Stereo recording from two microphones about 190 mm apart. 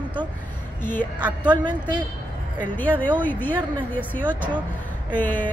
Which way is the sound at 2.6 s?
10° left (ahead or behind).